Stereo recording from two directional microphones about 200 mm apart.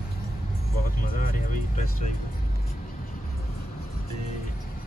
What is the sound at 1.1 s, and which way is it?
Vehicle, 45° left (ahead or behind).